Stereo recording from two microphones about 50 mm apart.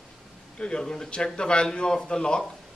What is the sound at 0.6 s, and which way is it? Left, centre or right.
A man's voice, centre.